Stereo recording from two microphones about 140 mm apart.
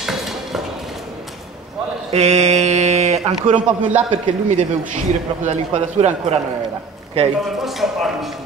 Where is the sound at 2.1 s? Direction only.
50° right (ahead or behind).